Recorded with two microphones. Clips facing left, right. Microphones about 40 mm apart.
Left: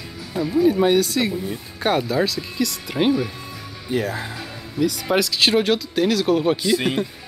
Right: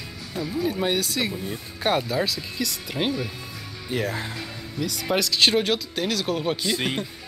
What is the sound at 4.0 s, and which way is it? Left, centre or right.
Speech, left.